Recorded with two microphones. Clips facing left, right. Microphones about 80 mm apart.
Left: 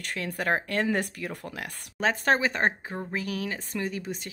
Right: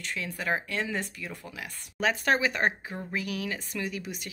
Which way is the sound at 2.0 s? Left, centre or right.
Left.